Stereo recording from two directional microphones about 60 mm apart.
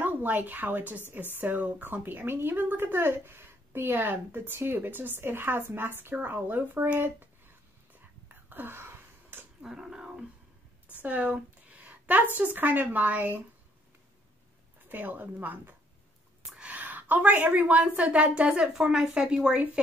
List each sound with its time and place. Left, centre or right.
0.0 s a woman's voice: right
8.3 s wheeze: right
9.6 s a sound: centre
11.0 s a woman's voice: right
14.9 s a woman's voice: right; by 19.6 s centre